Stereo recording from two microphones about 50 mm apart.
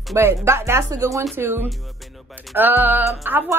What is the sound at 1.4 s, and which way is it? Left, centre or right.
A woman's voice, right.